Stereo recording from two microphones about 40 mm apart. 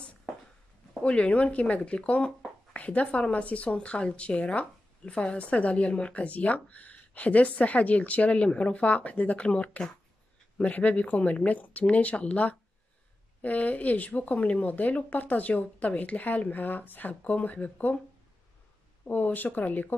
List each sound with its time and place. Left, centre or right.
1.0 s speech: left
19.0 s speech: left